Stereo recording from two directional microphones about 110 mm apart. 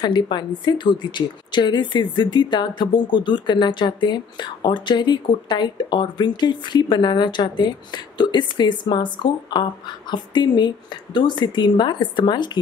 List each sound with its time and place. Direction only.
0.0 s a woman's voice: 40° left (ahead or behind)